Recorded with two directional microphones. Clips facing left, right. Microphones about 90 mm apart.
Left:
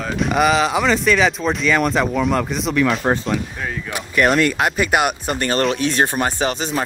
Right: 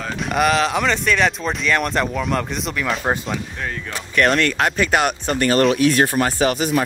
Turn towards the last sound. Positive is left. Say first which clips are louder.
# right 3 dB
turn(degrees=25)  # may be behind; listen again after turning